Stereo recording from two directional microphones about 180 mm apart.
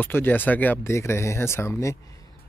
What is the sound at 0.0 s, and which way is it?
Speech, 10° left (ahead or behind).